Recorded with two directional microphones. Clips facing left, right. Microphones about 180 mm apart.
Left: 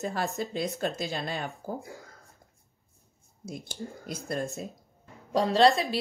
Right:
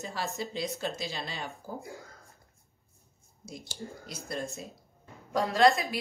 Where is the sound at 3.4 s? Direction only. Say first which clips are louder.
Left 4 dB; 55° left (ahead or behind).